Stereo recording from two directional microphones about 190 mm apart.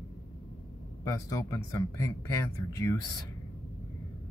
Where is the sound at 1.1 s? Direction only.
15° left (ahead or behind).